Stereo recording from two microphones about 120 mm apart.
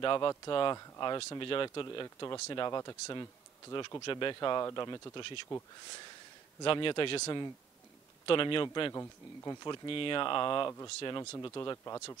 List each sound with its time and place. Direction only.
0.0 s speech: 40° left (ahead or behind)
0.7 s speech: 30° left (ahead or behind); by 7.2 s 45° left (ahead or behind)
7.2 s speech: 30° left (ahead or behind)
8.3 s speech: 45° left (ahead or behind)
8.9 s speech: 25° left (ahead or behind)
9.7 s speech: 45° left (ahead or behind); by 12.2 s 25° left (ahead or behind)